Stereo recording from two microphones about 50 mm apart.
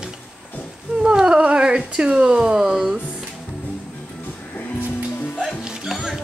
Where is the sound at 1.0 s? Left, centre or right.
Centre.